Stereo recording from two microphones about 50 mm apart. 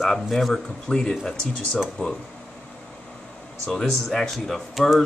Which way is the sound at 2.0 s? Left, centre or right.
Left.